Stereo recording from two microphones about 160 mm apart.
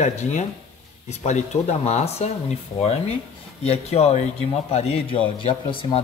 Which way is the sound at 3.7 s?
40° left (ahead or behind).